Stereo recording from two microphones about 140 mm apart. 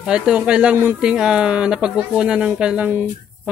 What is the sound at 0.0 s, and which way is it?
Speech, 5° right (ahead or behind).